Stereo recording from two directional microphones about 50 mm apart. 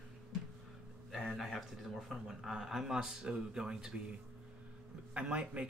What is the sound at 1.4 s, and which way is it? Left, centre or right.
Speech, centre.